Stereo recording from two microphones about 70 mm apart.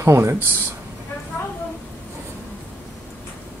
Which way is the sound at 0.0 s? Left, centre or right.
Right.